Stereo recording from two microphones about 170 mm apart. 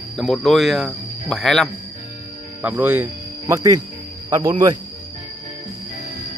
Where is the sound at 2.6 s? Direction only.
10° right (ahead or behind).